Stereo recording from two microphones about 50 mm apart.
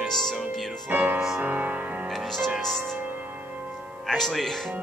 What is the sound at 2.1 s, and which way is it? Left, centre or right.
Speech, centre.